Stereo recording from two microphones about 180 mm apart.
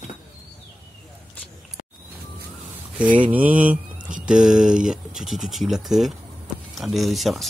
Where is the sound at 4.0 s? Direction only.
45° right (ahead or behind).